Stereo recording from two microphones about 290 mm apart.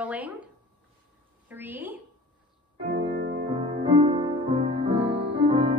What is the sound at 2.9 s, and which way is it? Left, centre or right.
Music, right.